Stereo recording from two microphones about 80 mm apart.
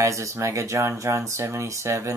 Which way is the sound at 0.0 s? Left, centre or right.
Right.